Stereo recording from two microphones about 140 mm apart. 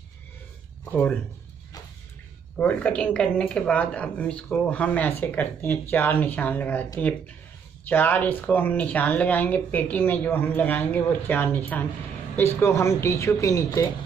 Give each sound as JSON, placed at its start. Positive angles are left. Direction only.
{"t": 2.5, "sound": "a woman's voice", "side_deg": 10}